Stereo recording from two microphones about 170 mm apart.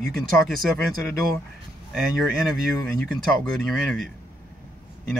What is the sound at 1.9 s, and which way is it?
Speech, centre (ahead or behind).